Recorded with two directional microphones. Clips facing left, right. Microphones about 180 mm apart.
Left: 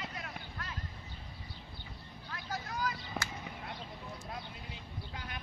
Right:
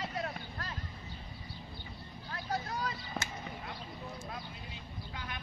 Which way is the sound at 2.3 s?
30° right (ahead or behind).